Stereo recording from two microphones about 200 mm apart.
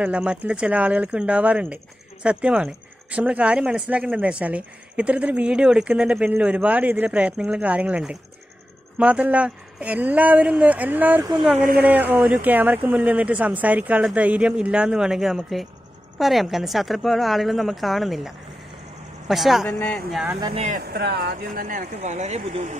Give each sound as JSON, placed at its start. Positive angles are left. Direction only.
{"t": 0.0, "sound": "speech", "side_deg": -5}
{"t": 11.5, "sound": "speech", "side_deg": -45}
{"t": 12.2, "sound": "speech", "side_deg": -5}
{"t": 20.3, "sound": "speech", "side_deg": -25}
{"t": 20.6, "sound": "speech", "side_deg": -45}